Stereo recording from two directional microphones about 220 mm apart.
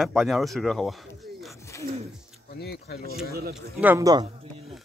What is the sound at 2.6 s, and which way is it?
Speech, 45° left (ahead or behind).